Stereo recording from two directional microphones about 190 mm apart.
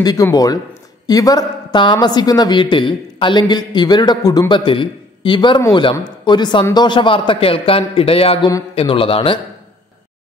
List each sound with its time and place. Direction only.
0.0 s a woman's voice: 20° left (ahead or behind)